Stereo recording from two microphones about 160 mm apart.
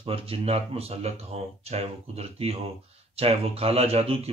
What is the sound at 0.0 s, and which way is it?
Speech, 35° right (ahead or behind).